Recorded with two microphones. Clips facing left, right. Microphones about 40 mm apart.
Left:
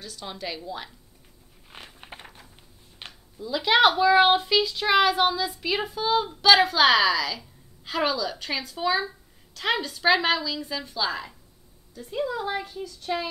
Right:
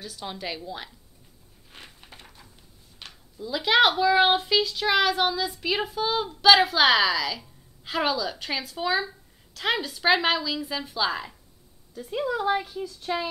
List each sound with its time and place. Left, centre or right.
0.0 s speech: centre
1.7 s a sound: left
3.3 s a woman's voice: centre